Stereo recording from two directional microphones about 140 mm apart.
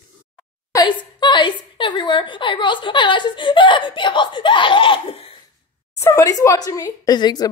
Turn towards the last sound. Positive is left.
turn(degrees=30)  # may be behind; listen again after turning